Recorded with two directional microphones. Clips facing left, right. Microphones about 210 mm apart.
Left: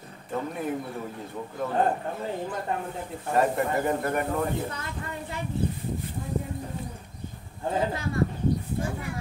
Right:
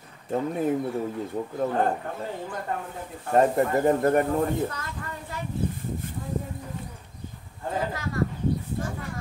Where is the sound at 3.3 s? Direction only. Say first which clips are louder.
Right 4 dB; 35° right (ahead or behind).